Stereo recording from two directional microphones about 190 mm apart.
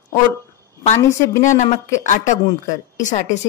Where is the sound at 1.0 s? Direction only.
15° left (ahead or behind).